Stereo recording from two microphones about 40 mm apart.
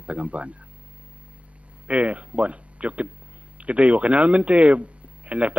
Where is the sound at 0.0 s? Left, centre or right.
Right.